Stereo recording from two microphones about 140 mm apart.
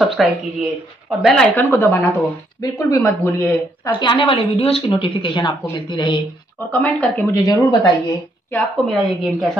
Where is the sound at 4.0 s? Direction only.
40° left (ahead or behind).